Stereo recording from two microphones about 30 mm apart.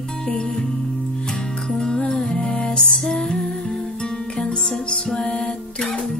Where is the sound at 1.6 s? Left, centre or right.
Centre.